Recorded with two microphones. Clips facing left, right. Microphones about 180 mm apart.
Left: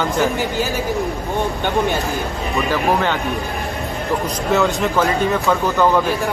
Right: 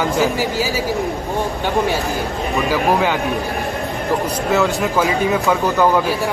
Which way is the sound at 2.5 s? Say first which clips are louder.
Right 1 dB; 5° right (ahead or behind).